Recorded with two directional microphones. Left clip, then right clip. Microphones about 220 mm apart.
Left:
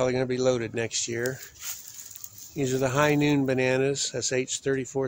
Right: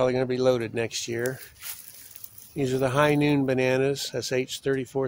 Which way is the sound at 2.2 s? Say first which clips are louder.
Left 6 dB; 30° right (ahead or behind).